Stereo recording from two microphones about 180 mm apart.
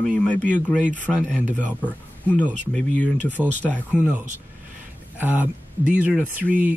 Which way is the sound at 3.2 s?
10° left (ahead or behind).